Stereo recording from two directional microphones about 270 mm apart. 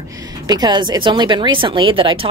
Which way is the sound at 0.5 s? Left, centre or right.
Centre.